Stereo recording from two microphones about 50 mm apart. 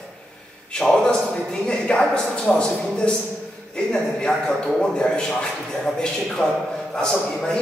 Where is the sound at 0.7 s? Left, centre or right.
Centre.